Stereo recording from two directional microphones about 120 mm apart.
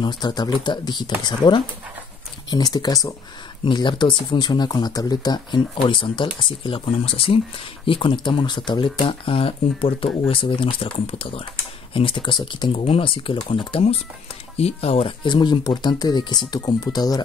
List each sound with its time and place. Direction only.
0.0 s speech: 40° left (ahead or behind)
3.6 s speech: 40° left (ahead or behind)
14.6 s speech: 60° left (ahead or behind)
15.2 s speech: 40° left (ahead or behind)